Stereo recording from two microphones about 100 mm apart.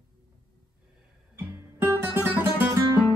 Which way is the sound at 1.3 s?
20° right (ahead or behind).